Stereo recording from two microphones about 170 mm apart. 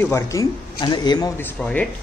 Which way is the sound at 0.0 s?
20° left (ahead or behind).